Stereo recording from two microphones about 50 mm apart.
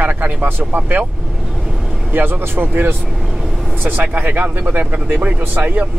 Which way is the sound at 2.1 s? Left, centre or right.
Right.